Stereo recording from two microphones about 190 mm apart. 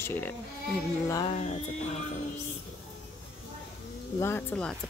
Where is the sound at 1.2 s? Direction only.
35° left (ahead or behind).